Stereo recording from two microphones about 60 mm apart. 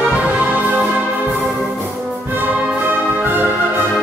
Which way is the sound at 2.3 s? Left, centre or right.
Right.